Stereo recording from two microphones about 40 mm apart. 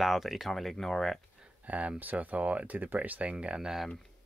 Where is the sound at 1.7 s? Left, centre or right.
Right.